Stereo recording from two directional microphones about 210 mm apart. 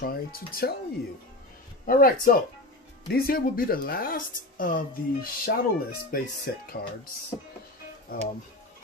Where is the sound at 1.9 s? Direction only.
45° left (ahead or behind).